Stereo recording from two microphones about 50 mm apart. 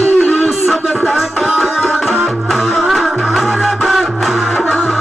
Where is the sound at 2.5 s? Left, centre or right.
Centre.